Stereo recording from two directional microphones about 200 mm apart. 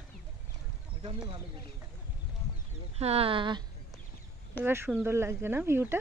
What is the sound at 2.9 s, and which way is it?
Speech, 30° right (ahead or behind).